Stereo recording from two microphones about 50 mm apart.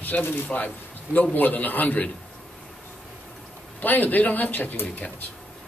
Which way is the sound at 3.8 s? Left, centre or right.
Left.